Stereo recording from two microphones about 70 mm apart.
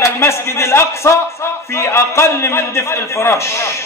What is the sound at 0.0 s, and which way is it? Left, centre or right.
A man's voice, left.